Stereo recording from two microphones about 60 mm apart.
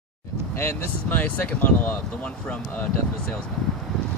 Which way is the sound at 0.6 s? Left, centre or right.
Left.